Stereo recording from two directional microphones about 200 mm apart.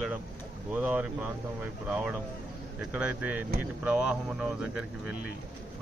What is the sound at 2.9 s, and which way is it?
Speech, 5° right (ahead or behind).